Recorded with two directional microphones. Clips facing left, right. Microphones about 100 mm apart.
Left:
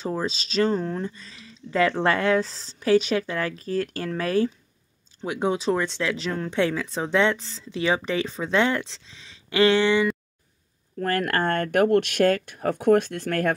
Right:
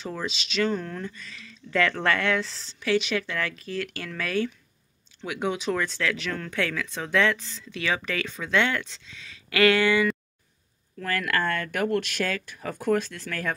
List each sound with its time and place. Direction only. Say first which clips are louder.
0.0 s speech: left 5 dB; 35° left (ahead or behind)
11.0 s speech: left 3 dB; 45° left (ahead or behind)